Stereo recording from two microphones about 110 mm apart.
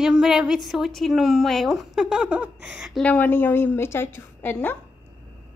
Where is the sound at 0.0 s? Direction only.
5° right (ahead or behind).